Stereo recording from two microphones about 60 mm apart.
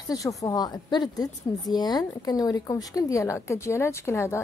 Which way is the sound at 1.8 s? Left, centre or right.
Left.